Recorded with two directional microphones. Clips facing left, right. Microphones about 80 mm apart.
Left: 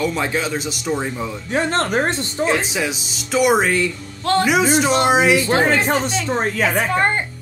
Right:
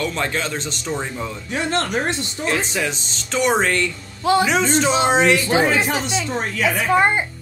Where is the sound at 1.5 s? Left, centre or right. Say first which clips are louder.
Left 3 dB; left.